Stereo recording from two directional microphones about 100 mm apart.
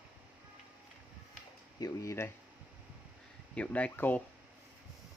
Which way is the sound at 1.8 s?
40° left (ahead or behind).